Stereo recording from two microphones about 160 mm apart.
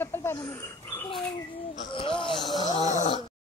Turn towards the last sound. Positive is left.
turn(degrees=50)  # may be behind; listen again after turning